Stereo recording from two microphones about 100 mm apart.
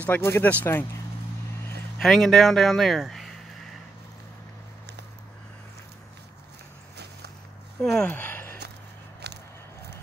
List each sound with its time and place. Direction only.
0.0 s speech: 20° left (ahead or behind)
2.0 s speech: centre (ahead or behind)
7.8 s speech: 5° left (ahead or behind)
8.1 s a sound: 20° left (ahead or behind)